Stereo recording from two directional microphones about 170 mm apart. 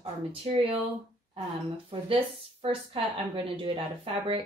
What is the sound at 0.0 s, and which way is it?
Speech, 35° right (ahead or behind).